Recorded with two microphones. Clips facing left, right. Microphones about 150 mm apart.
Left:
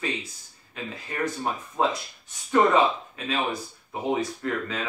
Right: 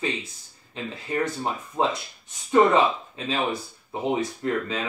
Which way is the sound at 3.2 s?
30° right (ahead or behind).